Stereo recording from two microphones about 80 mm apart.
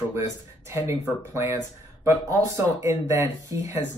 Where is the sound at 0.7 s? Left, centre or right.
Right.